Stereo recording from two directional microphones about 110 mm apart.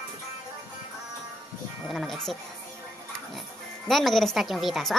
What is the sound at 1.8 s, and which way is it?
Speech, centre (ahead or behind).